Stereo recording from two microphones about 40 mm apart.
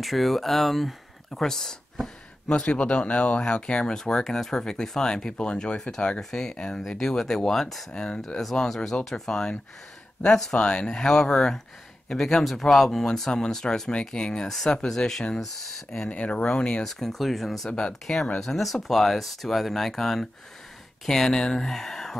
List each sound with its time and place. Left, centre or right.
0.0 s speech: centre
1.3 s speech: centre
2.5 s speech: left
3.9 s speech: centre
7.9 s speech: left
8.4 s speech: centre
16.1 s speech: left
16.4 s speech: left
16.8 s speech: centre
17.6 s speech: left